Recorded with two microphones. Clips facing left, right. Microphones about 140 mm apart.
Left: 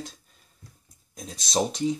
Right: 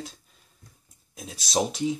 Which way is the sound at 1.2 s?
5° right (ahead or behind).